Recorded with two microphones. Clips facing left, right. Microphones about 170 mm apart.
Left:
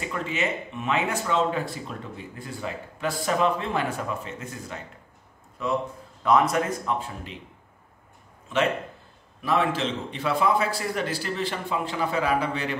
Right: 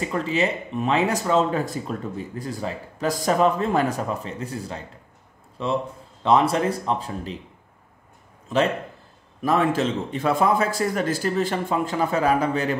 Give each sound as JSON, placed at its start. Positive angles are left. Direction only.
{"t": 0.0, "sound": "speech", "side_deg": -35}
{"t": 8.5, "sound": "a man's voice", "side_deg": -40}